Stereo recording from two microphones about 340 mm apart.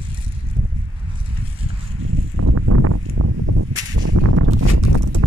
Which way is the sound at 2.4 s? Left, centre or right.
Right.